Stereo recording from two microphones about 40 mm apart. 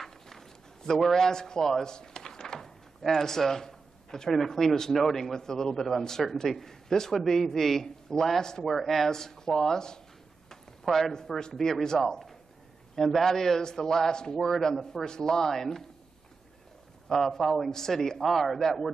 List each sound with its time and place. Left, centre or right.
0.0 s a sound: centre
3.0 s a man's voice: centre
17.1 s a man's voice: centre